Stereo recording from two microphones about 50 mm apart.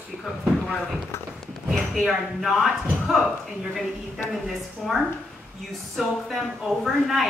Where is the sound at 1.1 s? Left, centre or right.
Left.